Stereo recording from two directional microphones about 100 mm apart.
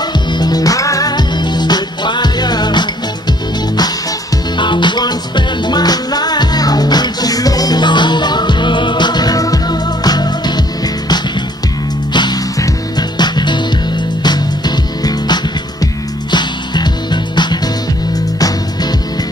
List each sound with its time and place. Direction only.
0.3 s music: 45° left (ahead or behind)
4.6 s music: 50° left (ahead or behind)
12.1 s music: 50° left (ahead or behind)